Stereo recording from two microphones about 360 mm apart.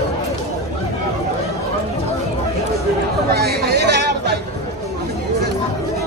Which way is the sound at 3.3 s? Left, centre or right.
Right.